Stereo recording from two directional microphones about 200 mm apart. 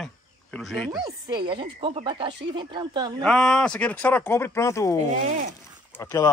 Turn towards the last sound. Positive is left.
turn(degrees=15)  # may be behind; listen again after turning